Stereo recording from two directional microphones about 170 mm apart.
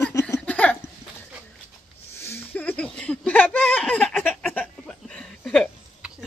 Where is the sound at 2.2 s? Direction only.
10° left (ahead or behind).